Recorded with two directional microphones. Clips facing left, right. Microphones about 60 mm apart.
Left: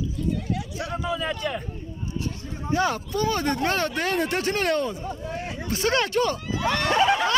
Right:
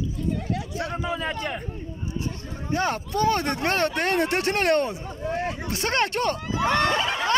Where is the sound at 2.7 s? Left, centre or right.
Right.